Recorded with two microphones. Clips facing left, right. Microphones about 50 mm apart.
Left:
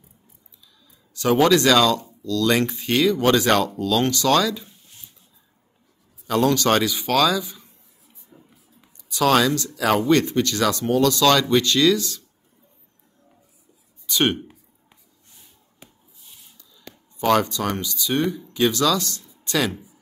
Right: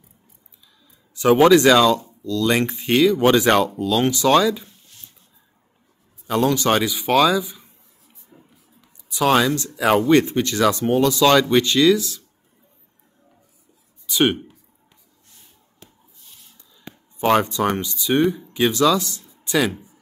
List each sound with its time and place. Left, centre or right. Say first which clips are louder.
1.1 s speech: right 4 dB; centre
6.2 s speech: even; centre
8.3 s a sound: even; right
9.1 s speech: right 1 dB; centre
14.0 s speech: right 2 dB; centre
15.3 s a sound: left 1 dB; centre
16.5 s speech: right 4 dB; right; by 19.7 s centre